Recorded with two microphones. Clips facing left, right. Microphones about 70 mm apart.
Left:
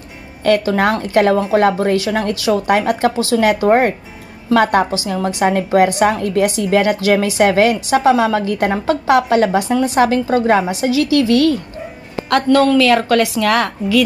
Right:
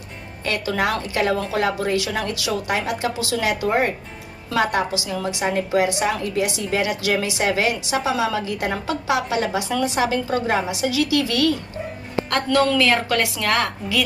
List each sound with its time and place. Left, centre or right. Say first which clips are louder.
1.0 s a woman's voice: left 8 dB; left
12.7 s a woman's voice: left 7 dB; left